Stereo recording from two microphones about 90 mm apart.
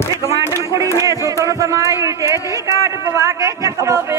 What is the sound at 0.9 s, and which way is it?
Speech, 35° right (ahead or behind).